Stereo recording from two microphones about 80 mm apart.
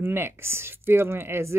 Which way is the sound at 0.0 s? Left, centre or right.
Right.